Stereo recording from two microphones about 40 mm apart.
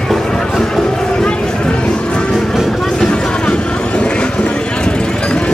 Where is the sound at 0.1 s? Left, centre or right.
Centre.